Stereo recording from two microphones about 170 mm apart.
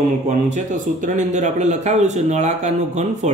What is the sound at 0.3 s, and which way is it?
Speech, 45° right (ahead or behind).